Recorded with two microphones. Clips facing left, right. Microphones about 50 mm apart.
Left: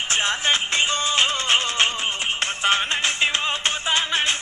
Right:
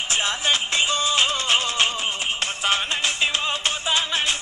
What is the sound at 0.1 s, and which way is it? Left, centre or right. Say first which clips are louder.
Music: left 1 dB; left.